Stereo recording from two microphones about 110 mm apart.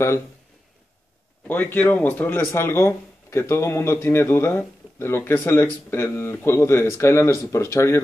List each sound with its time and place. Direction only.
1.5 s speech: 15° left (ahead or behind)